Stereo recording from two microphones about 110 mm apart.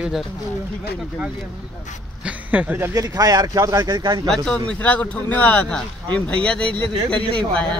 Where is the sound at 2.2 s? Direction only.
10° right (ahead or behind).